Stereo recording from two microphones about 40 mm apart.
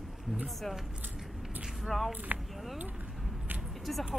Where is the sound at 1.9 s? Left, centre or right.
Centre.